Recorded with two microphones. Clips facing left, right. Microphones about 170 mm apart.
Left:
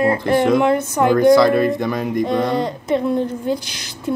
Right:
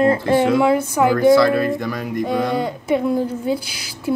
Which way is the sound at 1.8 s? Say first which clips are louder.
Left 3 dB; 20° left (ahead or behind).